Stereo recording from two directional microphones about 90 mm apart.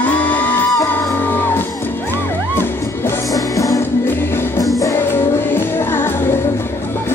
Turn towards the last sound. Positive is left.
turn(degrees=25)  # may be behind; listen again after turning